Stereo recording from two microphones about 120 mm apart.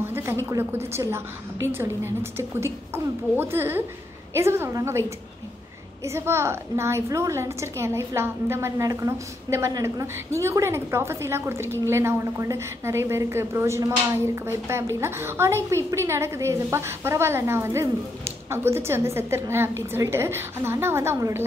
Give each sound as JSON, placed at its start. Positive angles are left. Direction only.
{"t": 0.0, "sound": "a sound", "side_deg": -20}
{"t": 0.5, "sound": "a woman's voice", "side_deg": -20}
{"t": 6.0, "sound": "a woman's voice", "side_deg": -20}